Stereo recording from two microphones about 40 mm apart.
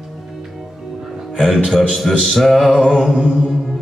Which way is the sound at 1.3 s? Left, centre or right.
Centre.